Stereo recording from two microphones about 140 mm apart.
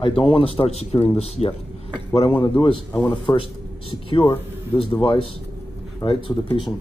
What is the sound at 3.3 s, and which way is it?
A man's voice, 30° left (ahead or behind).